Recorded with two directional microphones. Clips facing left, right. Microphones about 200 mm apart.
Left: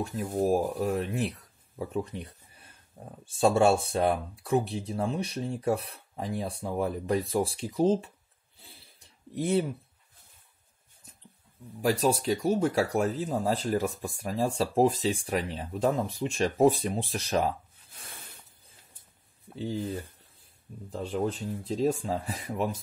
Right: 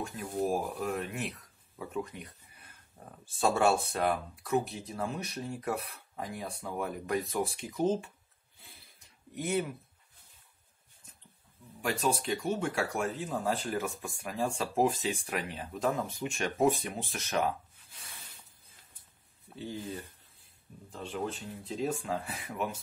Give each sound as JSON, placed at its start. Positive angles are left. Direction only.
{"t": 0.0, "sound": "speech", "side_deg": 40}
{"t": 3.3, "sound": "speech", "side_deg": 30}
{"t": 8.5, "sound": "a sound", "side_deg": 30}
{"t": 9.3, "sound": "speech", "side_deg": 30}
{"t": 11.8, "sound": "speech", "side_deg": 40}
{"t": 19.5, "sound": "a sound", "side_deg": 30}
{"t": 20.9, "sound": "speech", "side_deg": 40}